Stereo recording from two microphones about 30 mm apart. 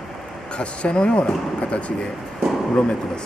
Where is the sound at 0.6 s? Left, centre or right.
Left.